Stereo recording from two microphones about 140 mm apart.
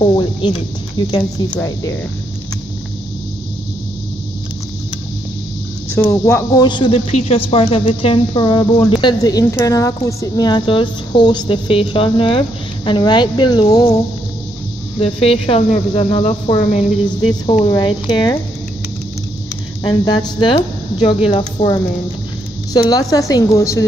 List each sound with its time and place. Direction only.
0.0 s speech: 35° left (ahead or behind)
6.2 s speech: 20° left (ahead or behind)
15.0 s speech: 40° left (ahead or behind)
17.6 s speech: 30° left (ahead or behind)
19.8 s a woman's voice: 30° left (ahead or behind)